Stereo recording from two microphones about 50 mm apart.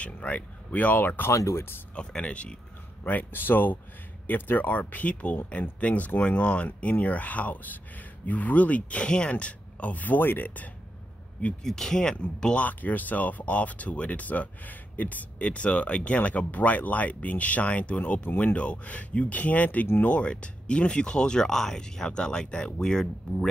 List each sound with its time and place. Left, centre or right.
0.0 s speech: left
1.3 s speech: left
2.0 s speech: left
3.0 s speech: left
11.6 s speech: centre
12.5 s speech: left
18.4 s speech: left